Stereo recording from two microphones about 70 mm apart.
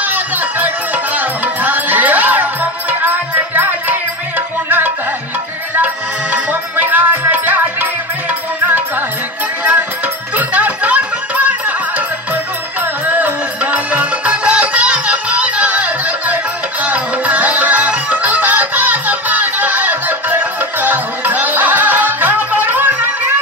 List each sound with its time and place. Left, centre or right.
0.0 s music: right
6.3 s music: right
10.3 s music: right
13.0 s music: right